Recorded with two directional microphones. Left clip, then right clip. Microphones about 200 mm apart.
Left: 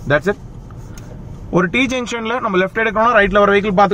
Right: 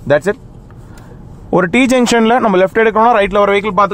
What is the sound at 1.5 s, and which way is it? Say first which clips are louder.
Speech: right 5 dB; 50° right (ahead or behind).